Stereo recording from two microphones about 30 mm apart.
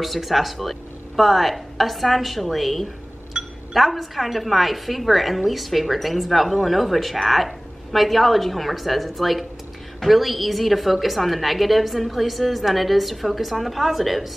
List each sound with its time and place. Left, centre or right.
0.0 s a woman's voice: centre
3.4 s a sound: centre
3.7 s a woman's voice: centre